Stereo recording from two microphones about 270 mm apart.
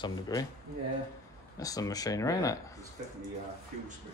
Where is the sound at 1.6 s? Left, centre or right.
Centre.